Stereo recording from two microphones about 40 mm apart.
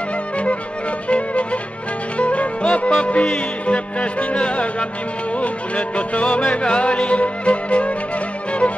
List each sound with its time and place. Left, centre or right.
1.0 s music: left